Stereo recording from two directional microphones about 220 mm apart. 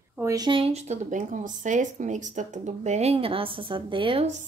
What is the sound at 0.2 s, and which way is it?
A woman's voice, 15° right (ahead or behind).